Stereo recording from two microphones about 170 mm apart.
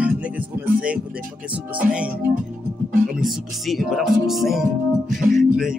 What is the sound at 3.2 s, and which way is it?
Music, centre (ahead or behind).